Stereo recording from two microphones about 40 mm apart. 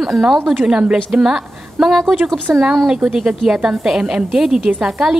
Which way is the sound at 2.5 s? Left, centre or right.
Right.